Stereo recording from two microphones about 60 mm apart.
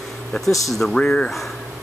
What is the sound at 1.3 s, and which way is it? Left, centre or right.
Speech, centre.